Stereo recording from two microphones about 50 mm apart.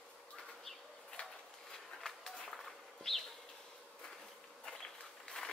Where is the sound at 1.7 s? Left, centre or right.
Centre.